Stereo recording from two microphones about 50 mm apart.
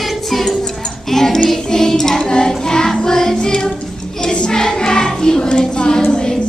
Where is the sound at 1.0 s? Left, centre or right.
Centre.